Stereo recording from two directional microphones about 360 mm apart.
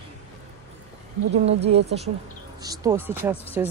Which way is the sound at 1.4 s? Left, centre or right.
Centre.